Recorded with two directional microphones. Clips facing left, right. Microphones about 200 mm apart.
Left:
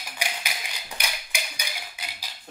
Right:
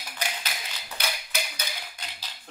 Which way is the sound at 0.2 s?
10° left (ahead or behind).